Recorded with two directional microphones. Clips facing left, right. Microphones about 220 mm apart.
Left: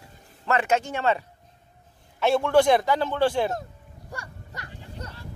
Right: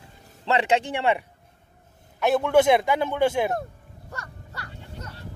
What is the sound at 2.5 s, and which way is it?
Speech, 20° right (ahead or behind).